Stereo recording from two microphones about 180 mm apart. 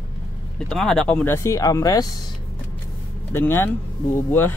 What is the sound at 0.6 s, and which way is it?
Speech, 5° left (ahead or behind).